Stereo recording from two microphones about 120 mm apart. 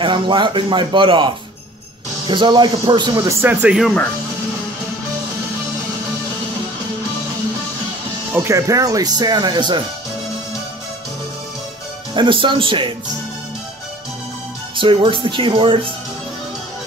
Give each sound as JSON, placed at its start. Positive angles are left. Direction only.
{"t": 0.0, "sound": "speech", "side_deg": -40}
{"t": 3.3, "sound": "speech", "side_deg": -25}
{"t": 3.6, "sound": "speech", "side_deg": -5}
{"t": 8.3, "sound": "speech", "side_deg": -20}
{"t": 12.1, "sound": "speech", "side_deg": -45}
{"t": 14.8, "sound": "speech", "side_deg": -45}